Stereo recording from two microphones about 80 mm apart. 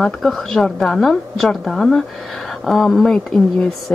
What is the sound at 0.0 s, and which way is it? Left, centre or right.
Speech, centre.